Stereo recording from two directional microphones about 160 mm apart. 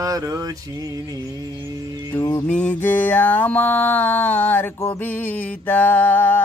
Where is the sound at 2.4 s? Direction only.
5° left (ahead or behind).